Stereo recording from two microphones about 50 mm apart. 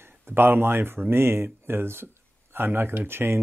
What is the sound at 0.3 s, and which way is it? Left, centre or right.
Speech, right.